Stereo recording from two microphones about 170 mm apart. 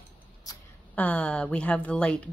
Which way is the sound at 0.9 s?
10° left (ahead or behind).